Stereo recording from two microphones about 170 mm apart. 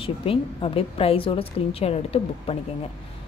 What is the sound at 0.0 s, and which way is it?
A woman's voice, 35° left (ahead or behind).